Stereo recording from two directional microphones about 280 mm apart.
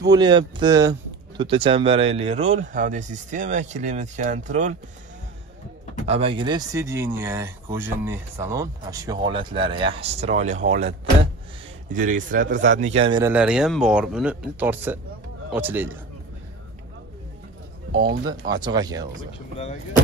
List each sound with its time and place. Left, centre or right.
0.1 s speech: centre
6.0 s speech: centre
12.4 s speech: right
12.7 s speech: right; by 16.0 s centre
18.0 s speech: right
18.5 s speech: centre